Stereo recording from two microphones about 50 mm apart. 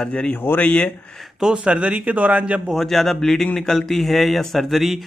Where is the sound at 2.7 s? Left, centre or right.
Centre.